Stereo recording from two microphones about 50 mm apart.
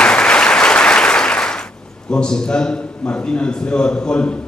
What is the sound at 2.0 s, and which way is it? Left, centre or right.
A man's voice, centre.